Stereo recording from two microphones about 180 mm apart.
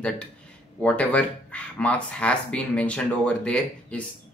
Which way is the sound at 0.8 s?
5° left (ahead or behind).